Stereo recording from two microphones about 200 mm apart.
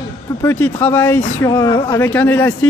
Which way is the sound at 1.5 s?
20° left (ahead or behind).